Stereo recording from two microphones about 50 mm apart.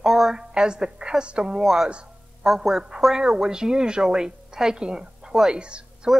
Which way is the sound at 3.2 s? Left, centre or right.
Centre.